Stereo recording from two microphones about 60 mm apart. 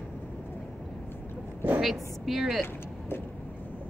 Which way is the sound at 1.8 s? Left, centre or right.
Centre.